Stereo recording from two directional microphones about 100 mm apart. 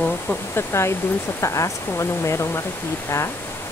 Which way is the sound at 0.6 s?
25° left (ahead or behind).